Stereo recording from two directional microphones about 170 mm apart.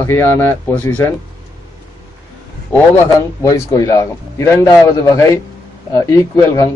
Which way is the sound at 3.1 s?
20° left (ahead or behind).